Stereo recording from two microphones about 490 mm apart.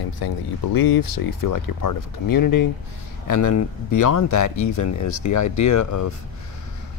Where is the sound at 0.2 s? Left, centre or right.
Left.